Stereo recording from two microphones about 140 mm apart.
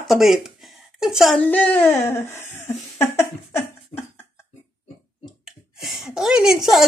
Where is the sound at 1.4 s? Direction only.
15° left (ahead or behind).